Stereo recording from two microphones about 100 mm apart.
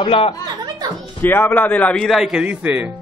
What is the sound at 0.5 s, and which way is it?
Music, 45° right (ahead or behind).